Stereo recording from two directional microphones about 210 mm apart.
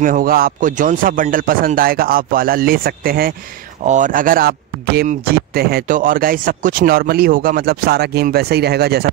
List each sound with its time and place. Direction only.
0.0 s speech: 40° right (ahead or behind)